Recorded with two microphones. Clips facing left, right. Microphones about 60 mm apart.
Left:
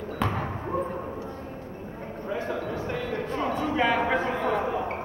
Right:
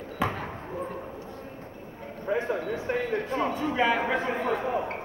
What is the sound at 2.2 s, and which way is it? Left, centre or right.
Speech, right.